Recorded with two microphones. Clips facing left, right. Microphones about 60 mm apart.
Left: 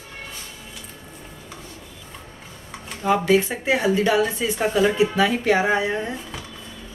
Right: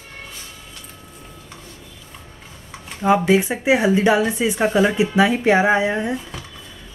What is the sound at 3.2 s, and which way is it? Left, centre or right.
Speech, centre.